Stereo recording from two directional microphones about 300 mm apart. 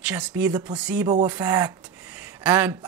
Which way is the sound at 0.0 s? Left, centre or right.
Centre.